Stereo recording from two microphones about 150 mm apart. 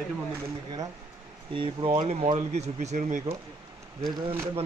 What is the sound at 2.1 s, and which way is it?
Speech, 50° right (ahead or behind).